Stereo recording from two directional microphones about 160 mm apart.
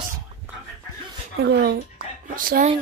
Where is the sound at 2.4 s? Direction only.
60° right (ahead or behind).